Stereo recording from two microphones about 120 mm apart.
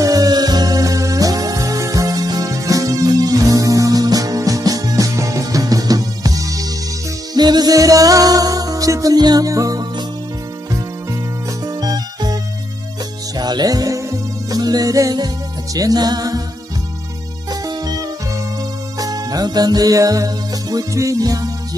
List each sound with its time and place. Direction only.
0.0 s music: 35° right (ahead or behind)
11.6 s music: 35° right (ahead or behind)
13.4 s music: 35° right (ahead or behind)
17.5 s music: 35° right (ahead or behind)